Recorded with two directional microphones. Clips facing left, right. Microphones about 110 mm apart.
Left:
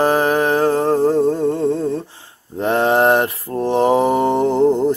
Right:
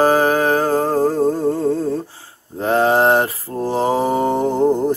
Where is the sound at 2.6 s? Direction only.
30° right (ahead or behind).